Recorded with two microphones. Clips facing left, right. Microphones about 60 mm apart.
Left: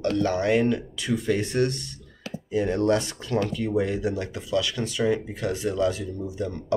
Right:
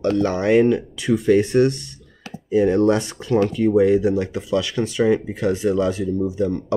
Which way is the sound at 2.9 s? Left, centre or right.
Right.